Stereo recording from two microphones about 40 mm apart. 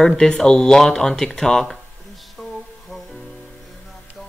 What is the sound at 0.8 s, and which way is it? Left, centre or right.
Music, centre.